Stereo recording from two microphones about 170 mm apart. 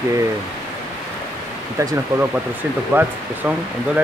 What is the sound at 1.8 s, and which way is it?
Speech, 15° right (ahead or behind).